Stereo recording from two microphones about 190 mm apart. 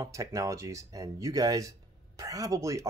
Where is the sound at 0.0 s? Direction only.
15° right (ahead or behind).